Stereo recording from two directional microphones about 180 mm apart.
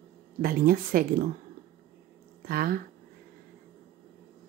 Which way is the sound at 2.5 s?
55° right (ahead or behind).